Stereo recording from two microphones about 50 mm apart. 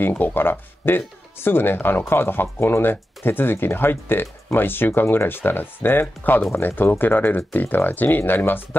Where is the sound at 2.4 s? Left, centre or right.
Left.